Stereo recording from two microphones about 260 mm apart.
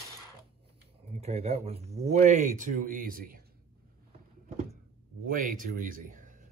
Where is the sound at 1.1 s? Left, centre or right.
Right.